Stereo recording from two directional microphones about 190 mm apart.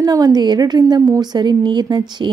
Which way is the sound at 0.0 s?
20° right (ahead or behind).